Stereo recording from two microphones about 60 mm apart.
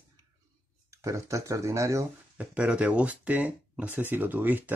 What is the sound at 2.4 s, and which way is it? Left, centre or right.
Speech, centre.